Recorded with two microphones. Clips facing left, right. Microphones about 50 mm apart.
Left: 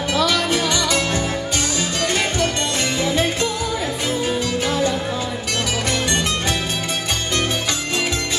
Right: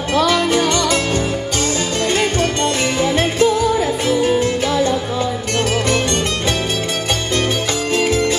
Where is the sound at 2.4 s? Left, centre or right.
Right.